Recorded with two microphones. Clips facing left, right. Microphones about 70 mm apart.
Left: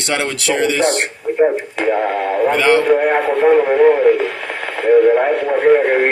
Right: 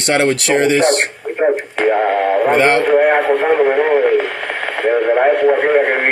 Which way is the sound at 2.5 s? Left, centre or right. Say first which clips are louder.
Left 2 dB; right.